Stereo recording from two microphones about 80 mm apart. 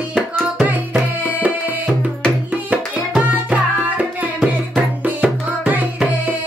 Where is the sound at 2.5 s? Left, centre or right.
Centre.